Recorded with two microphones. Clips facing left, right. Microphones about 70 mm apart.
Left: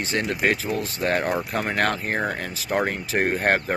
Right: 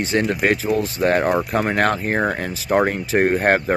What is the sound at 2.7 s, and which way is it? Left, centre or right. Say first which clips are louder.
Speech: right 6 dB; right.